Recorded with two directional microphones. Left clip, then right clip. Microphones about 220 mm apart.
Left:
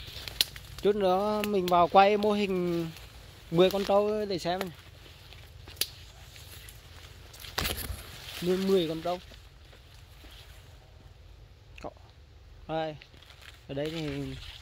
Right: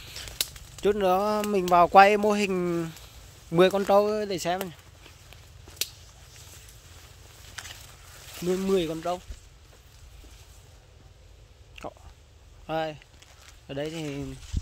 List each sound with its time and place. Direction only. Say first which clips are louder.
0.0 s speech: left 3 dB; 15° right (ahead or behind)
8.5 s speech: right 1 dB; 5° right (ahead or behind)
11.8 s a sound: right 3 dB; 10° right (ahead or behind)
12.6 s speech: right 3 dB; 10° right (ahead or behind)